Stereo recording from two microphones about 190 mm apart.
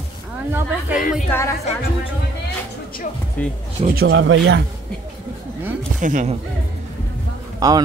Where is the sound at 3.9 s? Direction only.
55° right (ahead or behind).